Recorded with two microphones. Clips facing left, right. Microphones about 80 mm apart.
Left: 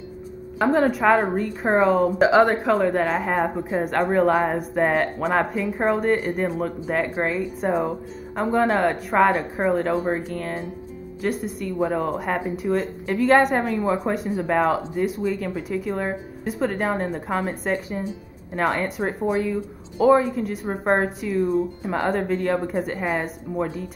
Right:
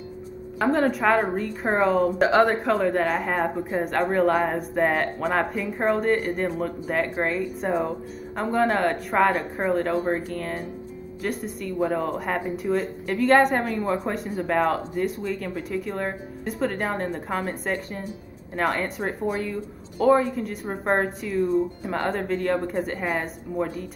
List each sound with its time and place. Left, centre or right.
0.6 s a woman's voice: centre